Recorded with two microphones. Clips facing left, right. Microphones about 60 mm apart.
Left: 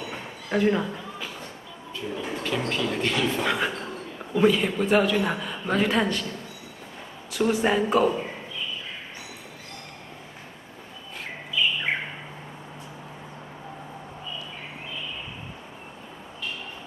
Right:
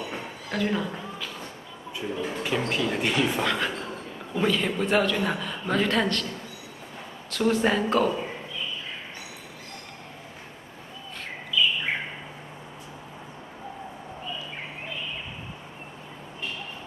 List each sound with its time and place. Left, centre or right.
0.5 s speech: centre
2.0 s speech: centre
3.4 s speech: centre
7.2 s speech: centre